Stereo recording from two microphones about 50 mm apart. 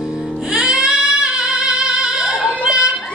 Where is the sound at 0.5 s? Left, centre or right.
Centre.